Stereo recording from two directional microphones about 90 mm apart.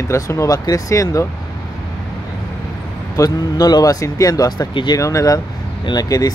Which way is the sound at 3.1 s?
45° left (ahead or behind).